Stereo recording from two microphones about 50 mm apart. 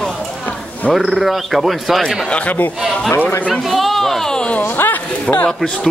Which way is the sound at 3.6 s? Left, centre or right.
Centre.